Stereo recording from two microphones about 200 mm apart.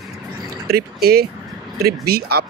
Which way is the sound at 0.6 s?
50° right (ahead or behind).